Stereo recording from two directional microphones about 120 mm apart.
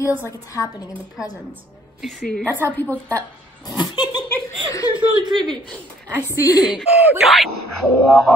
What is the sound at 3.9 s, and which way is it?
Laughter, 35° left (ahead or behind).